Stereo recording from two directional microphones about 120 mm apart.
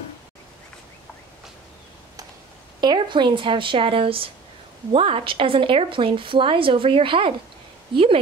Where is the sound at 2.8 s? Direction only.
40° right (ahead or behind).